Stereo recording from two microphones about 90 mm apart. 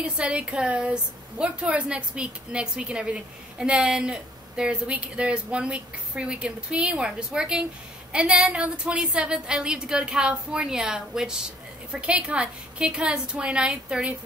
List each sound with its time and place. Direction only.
0.0 s a woman's voice: 10° right (ahead or behind)